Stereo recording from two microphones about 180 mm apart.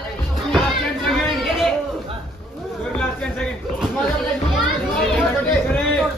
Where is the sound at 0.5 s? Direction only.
Centre (ahead or behind).